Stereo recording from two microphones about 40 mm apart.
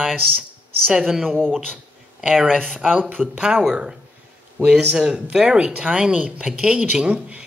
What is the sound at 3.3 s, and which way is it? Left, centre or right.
Speech, right.